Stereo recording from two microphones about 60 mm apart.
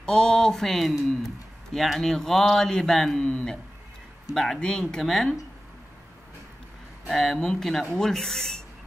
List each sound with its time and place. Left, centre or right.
0.0 s speech: centre
3.2 s a sound: left
4.3 s speech: centre
7.1 s speech: centre